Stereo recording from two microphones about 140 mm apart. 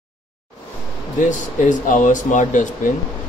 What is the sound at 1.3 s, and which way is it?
Speech, 65° left (ahead or behind).